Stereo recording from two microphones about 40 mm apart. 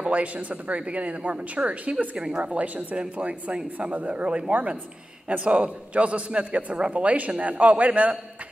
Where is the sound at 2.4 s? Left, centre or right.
Right.